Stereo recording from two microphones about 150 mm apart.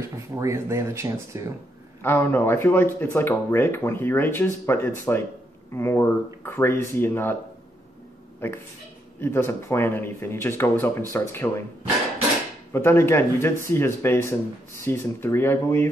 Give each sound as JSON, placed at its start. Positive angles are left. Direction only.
{"t": 0.4, "sound": "speech", "side_deg": -20}
{"t": 2.0, "sound": "speech", "side_deg": 15}
{"t": 9.2, "sound": "speech", "side_deg": 15}
{"t": 12.7, "sound": "speech", "side_deg": 15}